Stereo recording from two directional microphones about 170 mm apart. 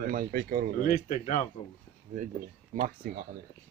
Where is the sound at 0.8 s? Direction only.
50° left (ahead or behind).